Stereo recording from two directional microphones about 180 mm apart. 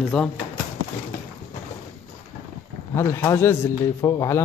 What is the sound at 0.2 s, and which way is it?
Speech, 5° left (ahead or behind).